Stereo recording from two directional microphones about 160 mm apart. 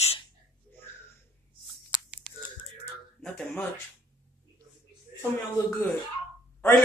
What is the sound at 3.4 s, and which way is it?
Speech, 10° left (ahead or behind).